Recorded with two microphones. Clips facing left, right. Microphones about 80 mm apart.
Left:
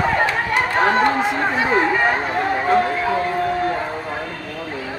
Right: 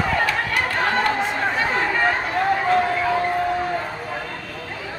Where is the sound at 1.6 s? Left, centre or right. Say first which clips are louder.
Left 4 dB; centre.